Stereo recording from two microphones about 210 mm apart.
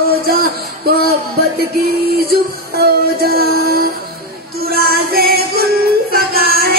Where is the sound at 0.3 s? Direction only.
45° right (ahead or behind).